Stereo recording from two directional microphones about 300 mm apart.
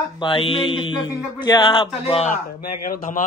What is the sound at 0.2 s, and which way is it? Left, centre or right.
Speech, centre.